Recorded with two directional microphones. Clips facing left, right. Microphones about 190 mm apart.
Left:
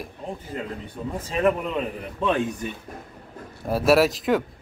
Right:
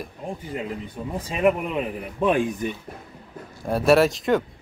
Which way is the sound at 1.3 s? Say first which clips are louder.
Right 1 dB; 10° right (ahead or behind).